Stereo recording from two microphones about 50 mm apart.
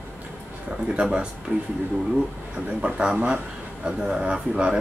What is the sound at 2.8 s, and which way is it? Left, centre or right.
Speech, centre.